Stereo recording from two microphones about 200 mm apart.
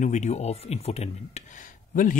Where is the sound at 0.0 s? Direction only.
35° left (ahead or behind).